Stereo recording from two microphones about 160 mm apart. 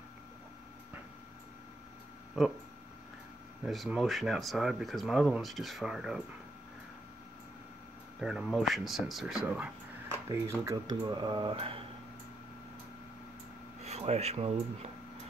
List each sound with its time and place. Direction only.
3.6 s speech: centre (ahead or behind)
8.2 s speech: 5° right (ahead or behind); by 11.8 s 35° right (ahead or behind)
13.8 s speech: 40° right (ahead or behind)